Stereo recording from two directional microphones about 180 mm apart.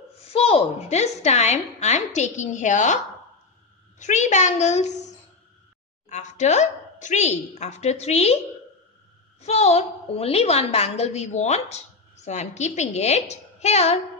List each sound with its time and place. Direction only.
0.3 s a woman's voice: 35° left (ahead or behind)
4.0 s a woman's voice: 40° left (ahead or behind)
6.0 s a woman's voice: 40° left (ahead or behind)
9.4 s a woman's voice: 35° left (ahead or behind)